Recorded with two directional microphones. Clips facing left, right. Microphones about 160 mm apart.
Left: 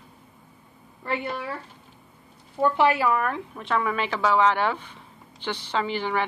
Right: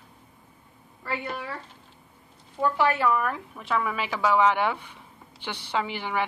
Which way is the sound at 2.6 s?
20° left (ahead or behind).